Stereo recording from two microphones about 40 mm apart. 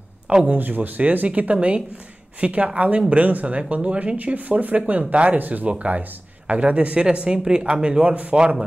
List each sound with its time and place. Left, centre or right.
0.5 s speech: right
4.2 s speech: right
5.4 s speech: right
8.1 s speech: right
8.4 s speech: right